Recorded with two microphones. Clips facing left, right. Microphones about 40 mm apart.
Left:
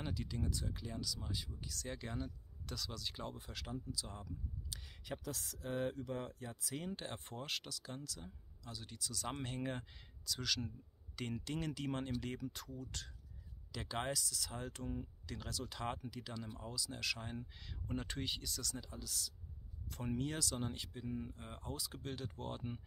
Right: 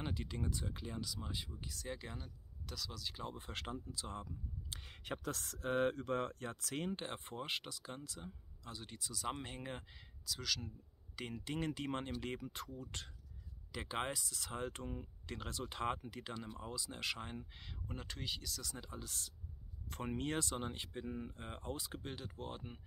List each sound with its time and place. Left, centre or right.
0.0 s speech: right
1.9 s speech: centre
3.3 s speech: right
6.9 s speech: right
9.1 s speech: centre
17.8 s speech: centre
18.6 s speech: centre
18.9 s speech: right
22.0 s speech: centre